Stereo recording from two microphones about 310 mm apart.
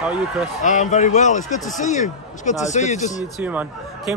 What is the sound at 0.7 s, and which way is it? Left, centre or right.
A man's voice, left.